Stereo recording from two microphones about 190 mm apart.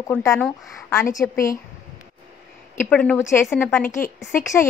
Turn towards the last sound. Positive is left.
turn(degrees=15)  # may be behind; listen again after turning